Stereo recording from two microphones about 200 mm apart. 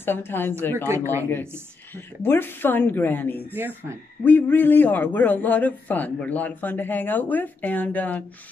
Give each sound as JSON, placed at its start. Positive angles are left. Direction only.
{"t": 0.0, "sound": "a man's voice", "side_deg": 10}
{"t": 2.0, "sound": "a man's voice", "side_deg": 10}
{"t": 3.5, "sound": "speech", "side_deg": -10}
{"t": 4.2, "sound": "a man's voice", "side_deg": 10}